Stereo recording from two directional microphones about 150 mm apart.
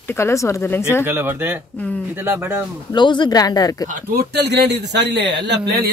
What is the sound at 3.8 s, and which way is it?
Speech, 70° right (ahead or behind).